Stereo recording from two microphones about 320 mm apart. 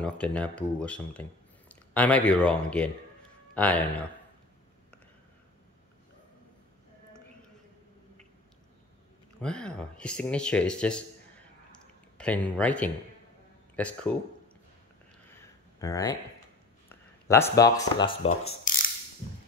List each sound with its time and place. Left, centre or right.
0.0 s speech: centre
9.4 s speech: centre
11.7 s a sound: centre
13.7 s speech: centre
15.3 s a sound: centre
16.9 s speech: centre